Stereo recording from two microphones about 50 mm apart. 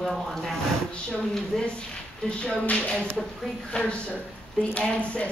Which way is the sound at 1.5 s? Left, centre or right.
Centre.